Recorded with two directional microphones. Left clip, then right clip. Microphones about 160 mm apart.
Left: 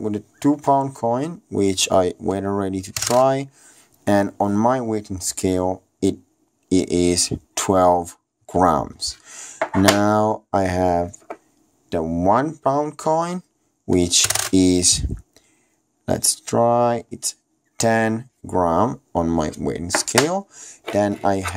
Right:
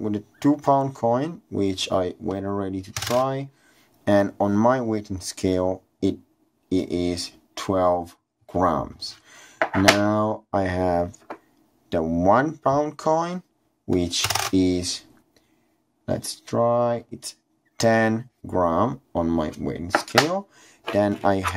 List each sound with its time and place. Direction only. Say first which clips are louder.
0.0 s speech: left 2 dB; 15° left (ahead or behind)
6.7 s speech: left 6 dB; 40° left (ahead or behind); by 13.4 s 20° left (ahead or behind)
13.9 s speech: left 5 dB; 30° left (ahead or behind); by 21.4 s 15° left (ahead or behind)